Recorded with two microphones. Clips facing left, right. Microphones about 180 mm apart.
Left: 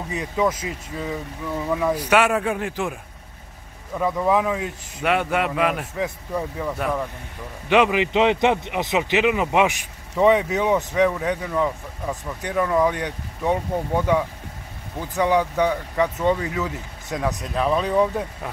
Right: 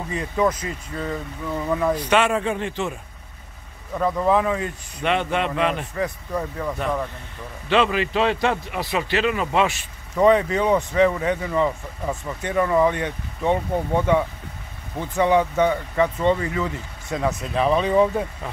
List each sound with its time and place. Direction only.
0.1 s speech: 5° left (ahead or behind)